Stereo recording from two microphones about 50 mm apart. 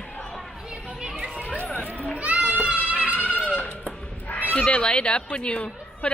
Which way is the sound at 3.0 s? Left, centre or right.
Left.